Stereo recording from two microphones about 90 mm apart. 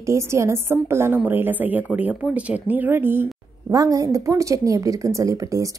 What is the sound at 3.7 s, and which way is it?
A woman's voice, 40° right (ahead or behind).